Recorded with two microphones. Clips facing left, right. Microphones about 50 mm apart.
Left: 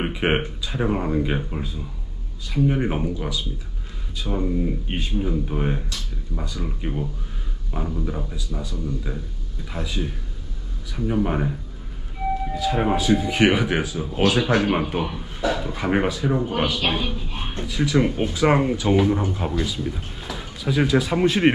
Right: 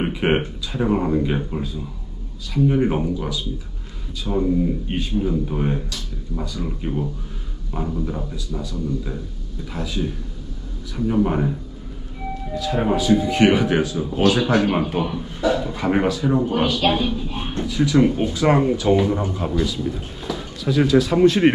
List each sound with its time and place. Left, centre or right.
0.0 s speech: centre
12.5 s speech: centre